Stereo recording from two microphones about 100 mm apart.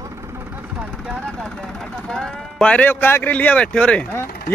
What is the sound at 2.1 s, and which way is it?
Speech, 10° left (ahead or behind).